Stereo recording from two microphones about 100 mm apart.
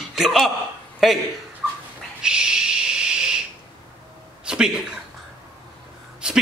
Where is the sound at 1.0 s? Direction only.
5° right (ahead or behind).